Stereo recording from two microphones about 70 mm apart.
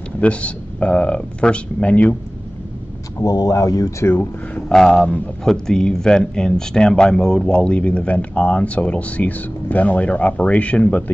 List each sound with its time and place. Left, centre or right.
0.2 s speech: centre
3.2 s speech: left
4.0 s speech: left
4.7 s speech: centre
5.0 s a man's voice: left
5.4 s speech: centre